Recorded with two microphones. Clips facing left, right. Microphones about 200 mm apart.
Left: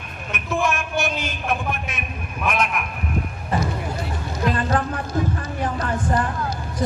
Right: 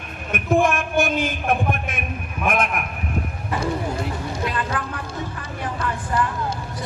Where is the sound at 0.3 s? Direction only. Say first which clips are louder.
Right 5 dB; 50° right (ahead or behind).